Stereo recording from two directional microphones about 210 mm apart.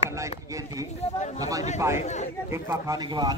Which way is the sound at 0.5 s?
15° right (ahead or behind).